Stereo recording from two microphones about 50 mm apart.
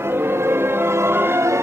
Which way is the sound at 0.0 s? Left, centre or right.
Right.